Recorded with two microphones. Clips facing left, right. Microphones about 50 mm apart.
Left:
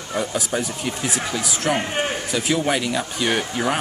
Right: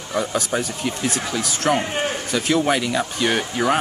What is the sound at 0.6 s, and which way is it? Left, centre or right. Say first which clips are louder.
Speech: right 1 dB; centre.